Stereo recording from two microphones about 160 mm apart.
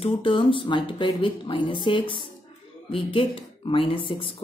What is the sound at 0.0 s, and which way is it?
Speech, 30° left (ahead or behind).